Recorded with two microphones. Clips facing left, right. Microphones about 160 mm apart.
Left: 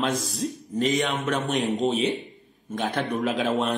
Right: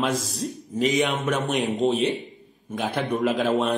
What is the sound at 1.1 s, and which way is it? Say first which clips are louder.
Speech: right 1 dB; 20° right (ahead or behind).